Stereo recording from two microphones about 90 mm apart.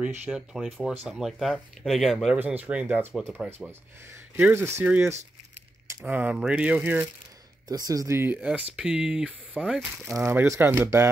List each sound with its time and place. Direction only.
0.0 s speech: 10° right (ahead or behind)
2.3 s speech: 20° right (ahead or behind)
3.4 s speech: 25° right (ahead or behind)
4.8 s speech: 20° right (ahead or behind)
7.6 s speech: 50° right (ahead or behind)
8.1 s speech: 25° right (ahead or behind)
8.7 s speech: 10° right (ahead or behind)
10.2 s speech: 25° right (ahead or behind)